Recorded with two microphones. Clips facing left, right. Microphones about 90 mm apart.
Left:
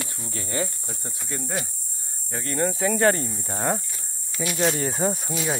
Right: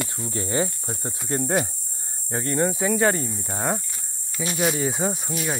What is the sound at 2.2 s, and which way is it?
Speech, 30° right (ahead or behind).